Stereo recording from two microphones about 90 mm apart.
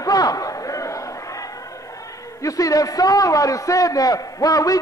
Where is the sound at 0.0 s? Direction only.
45° left (ahead or behind).